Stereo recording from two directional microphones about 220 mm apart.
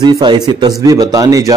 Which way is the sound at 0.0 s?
20° right (ahead or behind).